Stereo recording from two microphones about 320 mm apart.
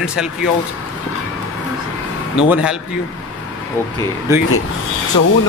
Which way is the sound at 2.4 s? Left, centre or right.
Centre.